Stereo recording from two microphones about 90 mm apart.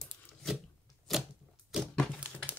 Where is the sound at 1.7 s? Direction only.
5° right (ahead or behind).